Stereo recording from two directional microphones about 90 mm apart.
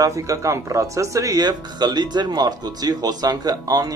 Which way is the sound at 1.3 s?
55° right (ahead or behind).